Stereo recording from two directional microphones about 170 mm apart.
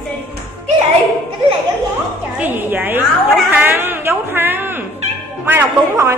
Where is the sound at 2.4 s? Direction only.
10° right (ahead or behind).